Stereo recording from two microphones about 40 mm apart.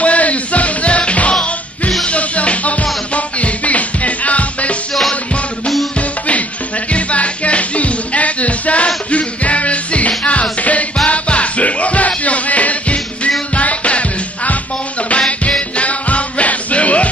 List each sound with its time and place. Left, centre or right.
0.0 s music: left
5.9 s music: left